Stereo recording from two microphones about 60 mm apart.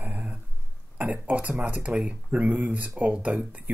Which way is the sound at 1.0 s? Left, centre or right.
Right.